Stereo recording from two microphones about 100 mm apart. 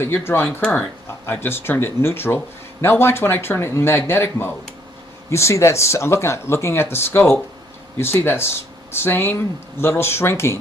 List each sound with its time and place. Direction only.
0.0 s speech: 25° left (ahead or behind)
0.6 s speech: 10° left (ahead or behind)
1.2 s speech: 20° left (ahead or behind)